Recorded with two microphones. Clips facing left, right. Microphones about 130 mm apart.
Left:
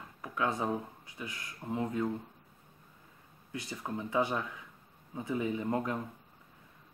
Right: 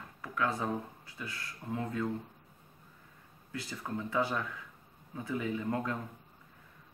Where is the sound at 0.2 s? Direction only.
20° left (ahead or behind).